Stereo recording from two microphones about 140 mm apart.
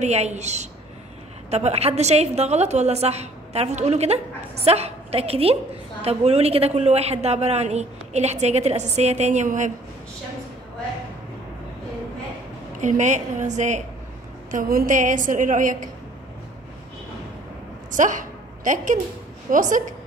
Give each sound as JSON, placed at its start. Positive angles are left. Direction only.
{"t": 0.0, "sound": "a woman's voice", "side_deg": -50}
{"t": 12.8, "sound": "a woman's voice", "side_deg": -60}
{"t": 14.5, "sound": "a woman's voice", "side_deg": -80}
{"t": 17.9, "sound": "a woman's voice", "side_deg": -65}